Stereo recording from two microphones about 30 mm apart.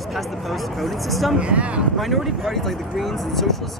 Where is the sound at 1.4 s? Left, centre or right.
Right.